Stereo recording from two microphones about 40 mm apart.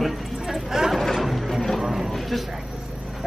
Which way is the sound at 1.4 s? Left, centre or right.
Centre.